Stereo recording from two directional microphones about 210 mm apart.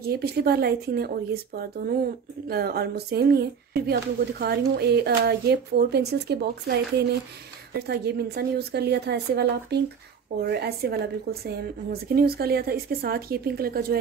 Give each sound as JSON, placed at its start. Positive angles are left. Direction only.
{"t": 0.0, "sound": "speech", "side_deg": -50}